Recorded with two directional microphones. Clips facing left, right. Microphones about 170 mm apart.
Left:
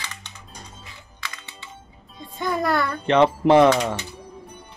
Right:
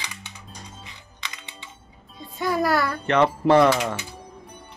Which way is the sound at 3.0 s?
20° left (ahead or behind).